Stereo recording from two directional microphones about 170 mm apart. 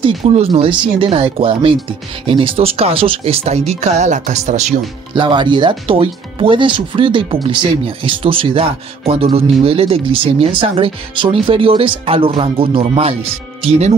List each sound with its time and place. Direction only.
0.0 s speech: 35° right (ahead or behind)
5.1 s speech: 25° right (ahead or behind)